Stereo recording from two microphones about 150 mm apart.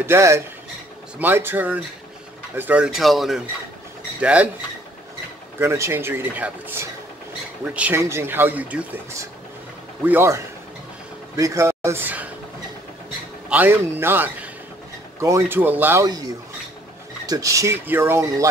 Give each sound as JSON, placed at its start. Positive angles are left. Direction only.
{"t": 0.0, "sound": "speech", "side_deg": -20}
{"t": 5.6, "sound": "speech", "side_deg": -20}
{"t": 10.0, "sound": "speech", "side_deg": -15}
{"t": 13.5, "sound": "speech", "side_deg": -10}
{"t": 17.3, "sound": "speech", "side_deg": -20}